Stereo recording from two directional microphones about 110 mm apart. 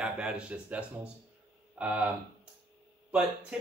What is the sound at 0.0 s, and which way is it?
Speech, 10° right (ahead or behind).